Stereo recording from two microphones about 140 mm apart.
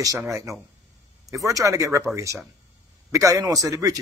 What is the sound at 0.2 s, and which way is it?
A man's voice, 20° right (ahead or behind).